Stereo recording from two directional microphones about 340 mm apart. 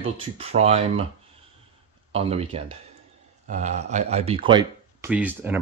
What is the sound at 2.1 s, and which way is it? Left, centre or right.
Speech, centre.